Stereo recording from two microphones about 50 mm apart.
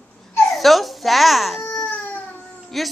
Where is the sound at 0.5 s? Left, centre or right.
Centre.